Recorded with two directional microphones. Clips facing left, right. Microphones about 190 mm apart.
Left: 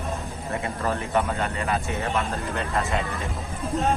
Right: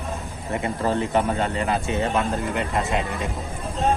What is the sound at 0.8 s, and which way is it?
Speech, 25° right (ahead or behind).